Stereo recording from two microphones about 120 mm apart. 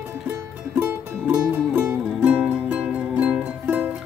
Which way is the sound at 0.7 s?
15° right (ahead or behind).